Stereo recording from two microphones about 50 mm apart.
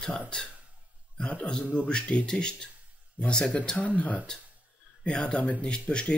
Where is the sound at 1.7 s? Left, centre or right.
Centre.